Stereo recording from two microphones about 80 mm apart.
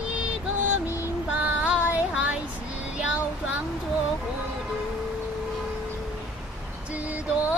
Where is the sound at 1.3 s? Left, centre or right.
Centre.